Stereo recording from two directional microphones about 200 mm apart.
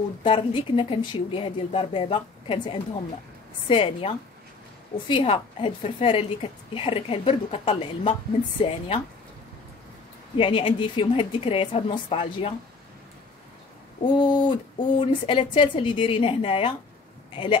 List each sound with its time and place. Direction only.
0.2 s a woman's voice: 25° left (ahead or behind)
10.3 s a woman's voice: 25° left (ahead or behind)
14.1 s a woman's voice: 25° left (ahead or behind)